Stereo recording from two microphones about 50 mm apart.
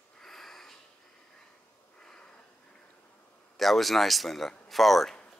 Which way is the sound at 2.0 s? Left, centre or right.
Centre.